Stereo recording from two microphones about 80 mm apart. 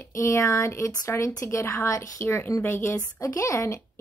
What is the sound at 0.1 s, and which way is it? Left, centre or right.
A woman's voice, left.